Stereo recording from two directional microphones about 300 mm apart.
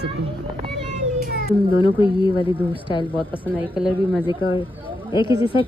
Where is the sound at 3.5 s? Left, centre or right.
Centre.